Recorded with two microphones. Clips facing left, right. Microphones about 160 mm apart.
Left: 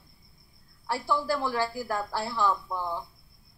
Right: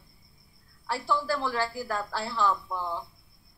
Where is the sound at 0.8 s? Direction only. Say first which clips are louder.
Left 1 dB; 15° left (ahead or behind).